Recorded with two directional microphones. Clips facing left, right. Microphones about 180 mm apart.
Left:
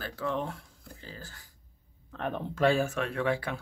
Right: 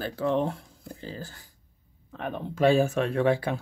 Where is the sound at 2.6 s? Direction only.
20° right (ahead or behind).